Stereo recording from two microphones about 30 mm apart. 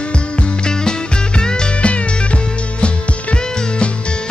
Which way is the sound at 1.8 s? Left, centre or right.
Left.